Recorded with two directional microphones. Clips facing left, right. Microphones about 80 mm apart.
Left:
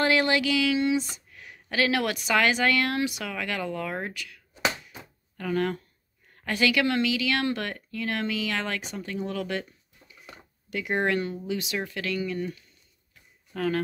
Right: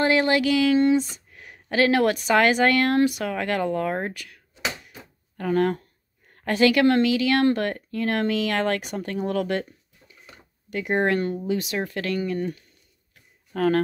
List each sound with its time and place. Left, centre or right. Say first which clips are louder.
0.0 s a sound: right 3 dB; right
0.4 s speech: right 5 dB; right
5.4 s a woman's voice: right 5 dB; right